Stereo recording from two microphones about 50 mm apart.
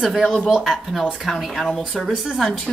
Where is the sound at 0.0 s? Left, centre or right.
Centre.